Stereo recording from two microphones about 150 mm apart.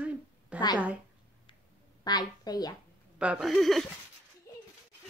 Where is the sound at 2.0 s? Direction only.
25° left (ahead or behind).